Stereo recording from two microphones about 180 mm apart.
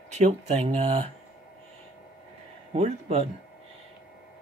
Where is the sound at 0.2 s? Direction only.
40° right (ahead or behind).